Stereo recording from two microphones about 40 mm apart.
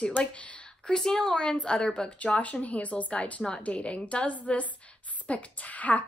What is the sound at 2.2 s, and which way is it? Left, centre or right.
A woman's voice, left.